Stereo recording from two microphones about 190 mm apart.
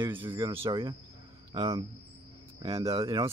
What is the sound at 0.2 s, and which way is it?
Speech, 25° right (ahead or behind).